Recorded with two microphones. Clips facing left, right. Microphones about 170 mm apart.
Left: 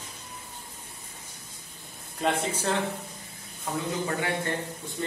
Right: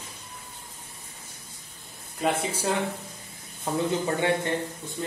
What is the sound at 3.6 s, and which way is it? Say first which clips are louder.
Speech: right 4 dB; 25° right (ahead or behind).